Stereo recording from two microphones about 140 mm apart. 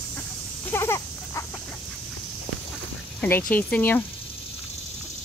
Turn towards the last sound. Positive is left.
turn(degrees=10)  # may be behind; listen again after turning